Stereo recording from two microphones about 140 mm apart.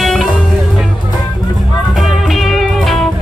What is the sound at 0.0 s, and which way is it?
Music, centre (ahead or behind).